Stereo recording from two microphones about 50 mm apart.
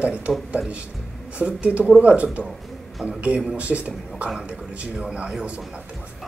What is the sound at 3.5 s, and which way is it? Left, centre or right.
Speech, right.